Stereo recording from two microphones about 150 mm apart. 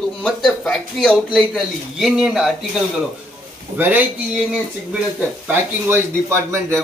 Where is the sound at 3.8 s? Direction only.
10° right (ahead or behind).